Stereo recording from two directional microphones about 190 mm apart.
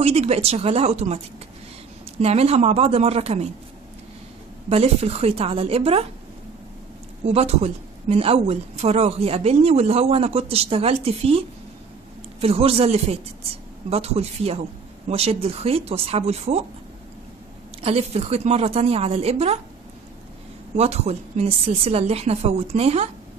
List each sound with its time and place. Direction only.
0.0 s a woman's voice: 35° right (ahead or behind)
4.6 s a woman's voice: 30° right (ahead or behind)
7.2 s a woman's voice: 35° right (ahead or behind)
17.8 s a woman's voice: 35° right (ahead or behind)
20.7 s a woman's voice: 35° right (ahead or behind)